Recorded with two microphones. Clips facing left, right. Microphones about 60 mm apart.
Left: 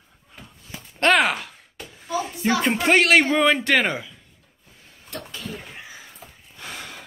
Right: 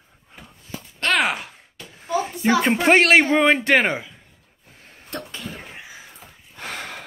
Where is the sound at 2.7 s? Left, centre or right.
Right.